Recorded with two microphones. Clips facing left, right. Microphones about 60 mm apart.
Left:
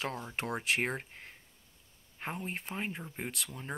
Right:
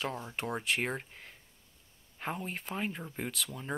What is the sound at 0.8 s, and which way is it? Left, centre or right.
Speech, left.